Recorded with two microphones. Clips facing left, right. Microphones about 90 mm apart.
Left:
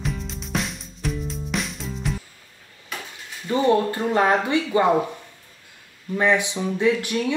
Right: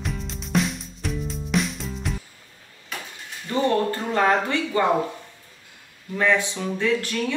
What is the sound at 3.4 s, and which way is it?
Speech, 15° left (ahead or behind).